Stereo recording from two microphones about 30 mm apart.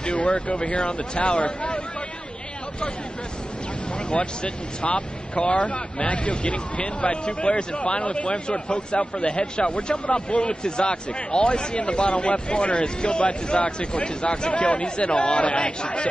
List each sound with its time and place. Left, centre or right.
0.0 s speech: left
4.1 s speech: left
6.0 s speech: left
12.8 s speech: left